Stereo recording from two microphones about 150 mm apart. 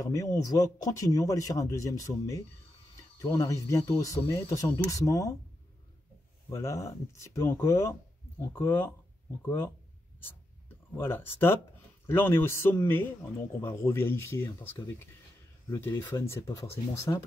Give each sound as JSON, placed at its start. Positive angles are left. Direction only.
{"t": 0.0, "sound": "speech", "side_deg": 20}
{"t": 6.5, "sound": "a man's voice", "side_deg": 20}
{"t": 11.0, "sound": "a man's voice", "side_deg": 15}